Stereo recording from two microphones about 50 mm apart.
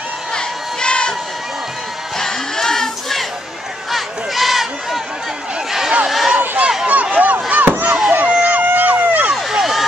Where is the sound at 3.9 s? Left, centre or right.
Centre.